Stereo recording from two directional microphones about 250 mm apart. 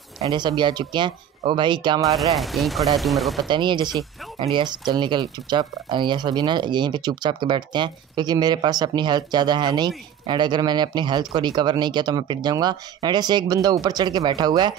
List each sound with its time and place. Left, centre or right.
0.2 s speech: centre
2.1 s speech: centre
3.4 s speech: centre